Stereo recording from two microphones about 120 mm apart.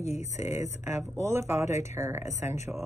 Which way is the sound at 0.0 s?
75° left (ahead or behind).